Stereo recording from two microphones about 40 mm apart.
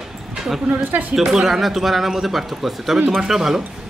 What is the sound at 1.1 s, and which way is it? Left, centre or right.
Speech, centre.